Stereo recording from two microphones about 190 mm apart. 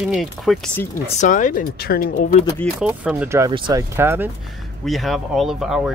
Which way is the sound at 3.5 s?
25° right (ahead or behind).